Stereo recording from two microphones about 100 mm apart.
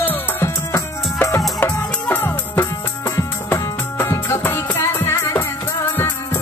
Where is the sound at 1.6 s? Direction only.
20° left (ahead or behind).